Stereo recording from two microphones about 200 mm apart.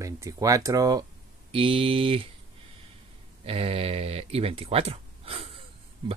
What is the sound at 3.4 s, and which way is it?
Speech, 30° right (ahead or behind).